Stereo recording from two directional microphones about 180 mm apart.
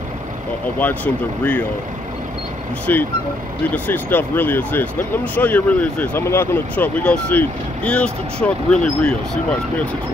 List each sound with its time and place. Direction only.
0.7 s speech: 10° left (ahead or behind)
2.9 s speech: 10° left (ahead or behind)